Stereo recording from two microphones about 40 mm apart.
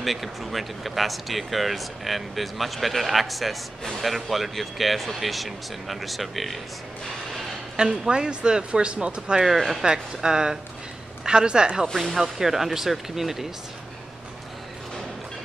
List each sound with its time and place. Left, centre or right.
0.0 s speech: centre
7.8 s speech: right
9.6 s speech: centre
9.8 s speech: centre
12.0 s speech: centre